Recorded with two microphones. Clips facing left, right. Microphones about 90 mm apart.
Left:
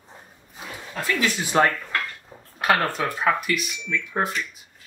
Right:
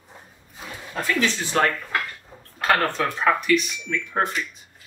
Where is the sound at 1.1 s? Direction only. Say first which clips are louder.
Left 2 dB; 10° left (ahead or behind).